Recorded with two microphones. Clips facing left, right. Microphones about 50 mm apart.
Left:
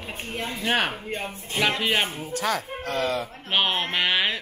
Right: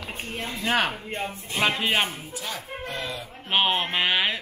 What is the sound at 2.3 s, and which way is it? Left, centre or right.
Speech, left.